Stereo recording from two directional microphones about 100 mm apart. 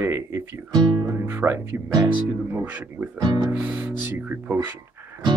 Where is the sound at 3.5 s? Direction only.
20° right (ahead or behind).